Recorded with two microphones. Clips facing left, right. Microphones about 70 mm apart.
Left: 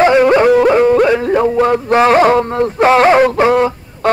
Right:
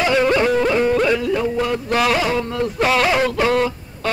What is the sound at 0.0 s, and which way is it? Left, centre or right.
Music, left.